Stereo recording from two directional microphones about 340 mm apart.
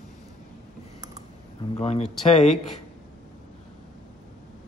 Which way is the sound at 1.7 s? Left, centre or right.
Centre.